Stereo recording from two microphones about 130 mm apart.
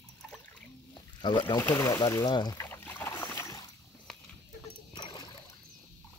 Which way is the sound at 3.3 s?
25° left (ahead or behind).